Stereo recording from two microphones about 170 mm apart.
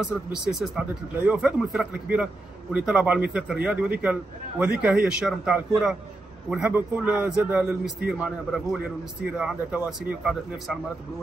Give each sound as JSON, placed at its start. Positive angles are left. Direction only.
{"t": 0.0, "sound": "a man's voice", "side_deg": -5}